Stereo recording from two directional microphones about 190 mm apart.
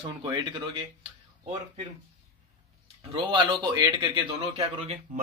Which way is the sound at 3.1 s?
25° right (ahead or behind).